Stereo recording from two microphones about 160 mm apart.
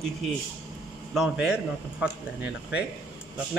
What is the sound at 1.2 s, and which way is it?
A man's voice, 5° right (ahead or behind).